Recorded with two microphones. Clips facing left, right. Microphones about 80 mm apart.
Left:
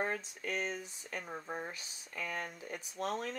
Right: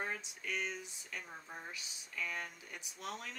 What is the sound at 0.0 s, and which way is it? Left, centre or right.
Speech, left.